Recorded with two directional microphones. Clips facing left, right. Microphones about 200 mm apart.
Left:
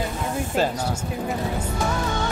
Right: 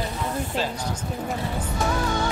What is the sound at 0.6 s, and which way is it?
Speech, 45° left (ahead or behind).